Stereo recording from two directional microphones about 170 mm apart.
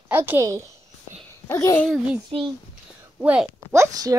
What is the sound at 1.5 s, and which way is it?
Speech, 15° left (ahead or behind).